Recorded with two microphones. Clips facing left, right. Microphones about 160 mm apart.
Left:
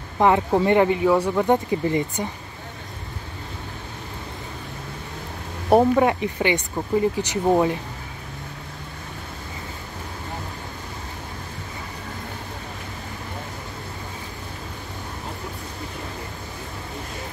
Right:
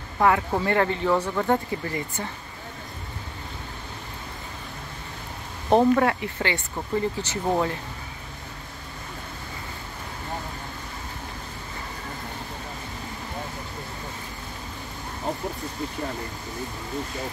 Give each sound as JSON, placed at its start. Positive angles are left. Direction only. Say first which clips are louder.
{"t": 0.2, "sound": "speech", "louder": "left 4 dB", "side_deg": 20}
{"t": 5.7, "sound": "speech", "louder": "left 2 dB", "side_deg": 15}